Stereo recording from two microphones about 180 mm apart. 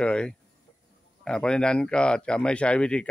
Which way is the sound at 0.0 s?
5° left (ahead or behind).